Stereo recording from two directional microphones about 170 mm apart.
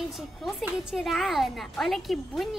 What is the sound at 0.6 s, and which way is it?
A woman's voice, centre (ahead or behind).